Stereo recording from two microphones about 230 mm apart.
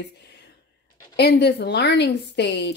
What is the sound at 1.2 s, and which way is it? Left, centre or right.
Speech, left.